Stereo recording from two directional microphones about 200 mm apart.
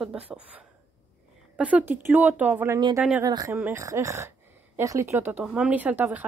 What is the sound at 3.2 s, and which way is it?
Speech, 20° right (ahead or behind).